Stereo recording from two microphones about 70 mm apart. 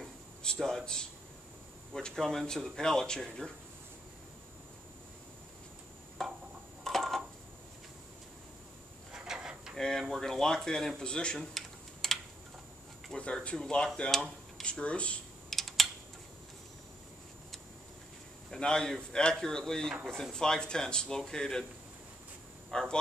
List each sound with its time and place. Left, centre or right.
0.0 s a sound: centre
2.0 s speech: centre
6.2 s a sound: centre
9.1 s a sound: centre
9.8 s speech: centre
13.1 s speech: centre
15.5 s typing: centre
18.5 s speech: centre
22.7 s speech: centre